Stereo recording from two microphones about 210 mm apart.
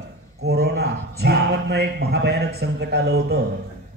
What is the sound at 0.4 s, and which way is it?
Speech, 50° right (ahead or behind).